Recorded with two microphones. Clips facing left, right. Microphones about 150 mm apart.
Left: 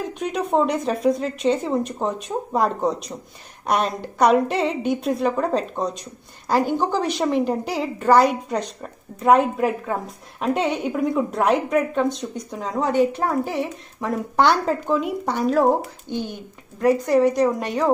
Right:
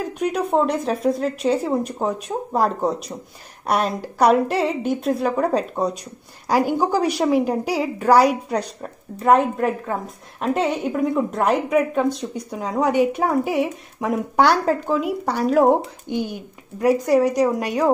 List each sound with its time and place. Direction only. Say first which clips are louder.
0.2 s a woman's voice: right 1 dB; 5° right (ahead or behind)
16.1 s a woman's voice: right 3 dB; 15° right (ahead or behind)